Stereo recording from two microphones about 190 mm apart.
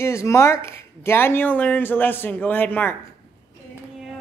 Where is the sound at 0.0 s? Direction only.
15° left (ahead or behind).